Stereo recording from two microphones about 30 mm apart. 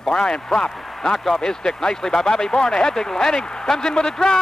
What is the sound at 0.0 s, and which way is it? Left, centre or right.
Speech, left.